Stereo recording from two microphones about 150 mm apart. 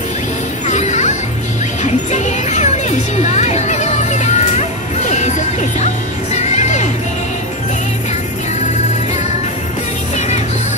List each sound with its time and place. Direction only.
0.7 s music: 50° left (ahead or behind)
2.1 s music: 50° left (ahead or behind)